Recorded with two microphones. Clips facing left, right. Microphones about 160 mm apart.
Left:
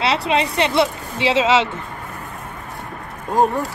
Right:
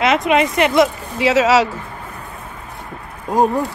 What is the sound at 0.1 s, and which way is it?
Speech, 30° left (ahead or behind).